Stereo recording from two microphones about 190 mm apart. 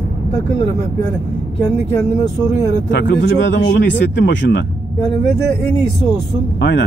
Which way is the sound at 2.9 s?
65° left (ahead or behind).